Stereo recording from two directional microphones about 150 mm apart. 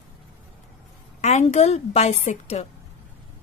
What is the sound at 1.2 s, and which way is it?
A woman's voice, 45° left (ahead or behind).